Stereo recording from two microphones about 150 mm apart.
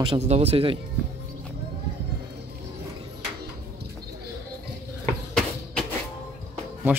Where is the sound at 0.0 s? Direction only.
40° right (ahead or behind).